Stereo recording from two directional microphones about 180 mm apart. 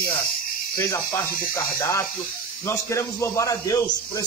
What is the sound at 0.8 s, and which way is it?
A man's voice, 20° left (ahead or behind).